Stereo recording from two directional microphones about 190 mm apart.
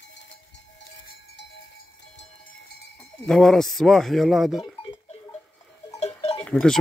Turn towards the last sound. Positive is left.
turn(degrees=5)  # may be behind; listen again after turning